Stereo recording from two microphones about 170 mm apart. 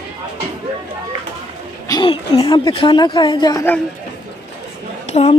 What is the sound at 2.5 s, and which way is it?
Speech, 25° left (ahead or behind).